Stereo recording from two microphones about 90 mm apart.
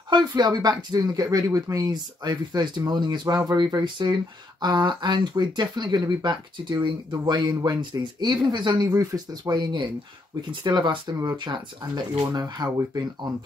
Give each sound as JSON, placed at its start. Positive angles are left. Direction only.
{"t": 0.1, "sound": "speech", "side_deg": -55}